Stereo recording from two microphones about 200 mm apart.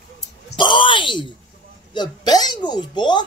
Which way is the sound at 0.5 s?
25° left (ahead or behind).